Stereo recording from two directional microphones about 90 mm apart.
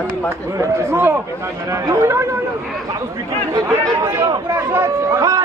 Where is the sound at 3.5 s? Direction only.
40° right (ahead or behind).